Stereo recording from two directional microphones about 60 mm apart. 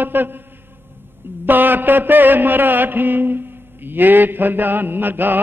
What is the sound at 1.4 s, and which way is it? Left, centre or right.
Mantra, right.